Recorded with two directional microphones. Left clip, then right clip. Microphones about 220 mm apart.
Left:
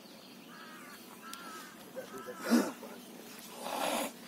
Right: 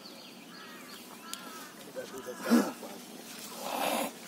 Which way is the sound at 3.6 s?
25° right (ahead or behind).